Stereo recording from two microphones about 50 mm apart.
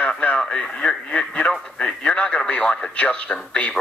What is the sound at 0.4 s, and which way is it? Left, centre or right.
Speech, centre.